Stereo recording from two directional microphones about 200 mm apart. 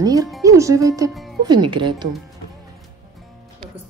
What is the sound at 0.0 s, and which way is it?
Music, 15° right (ahead or behind).